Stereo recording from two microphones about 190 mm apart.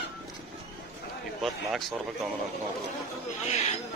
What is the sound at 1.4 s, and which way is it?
Speech, centre (ahead or behind).